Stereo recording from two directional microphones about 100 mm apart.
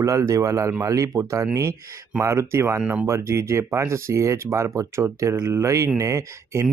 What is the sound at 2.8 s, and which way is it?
Speech, 15° right (ahead or behind).